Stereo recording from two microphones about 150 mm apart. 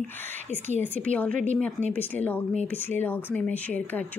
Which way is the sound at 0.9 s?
10° left (ahead or behind).